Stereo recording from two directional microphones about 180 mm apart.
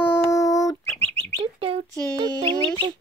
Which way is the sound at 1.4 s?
30° right (ahead or behind).